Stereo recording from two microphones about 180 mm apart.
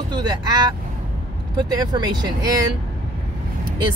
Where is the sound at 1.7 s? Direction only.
20° right (ahead or behind).